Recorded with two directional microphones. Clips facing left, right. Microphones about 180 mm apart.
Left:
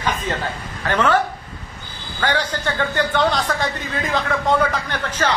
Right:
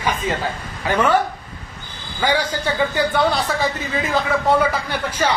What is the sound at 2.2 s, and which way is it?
A man's voice, 10° right (ahead or behind).